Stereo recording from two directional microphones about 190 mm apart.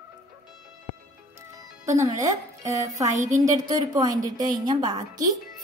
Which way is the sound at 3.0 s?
15° right (ahead or behind).